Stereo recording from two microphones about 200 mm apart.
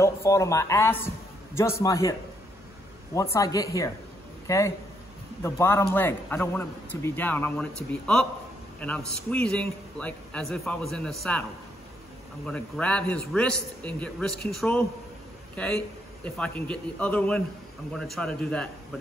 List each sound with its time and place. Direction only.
0.0 s a man's voice: 15° left (ahead or behind)
3.3 s a man's voice: 15° left (ahead or behind)
12.4 s a man's voice: 5° left (ahead or behind)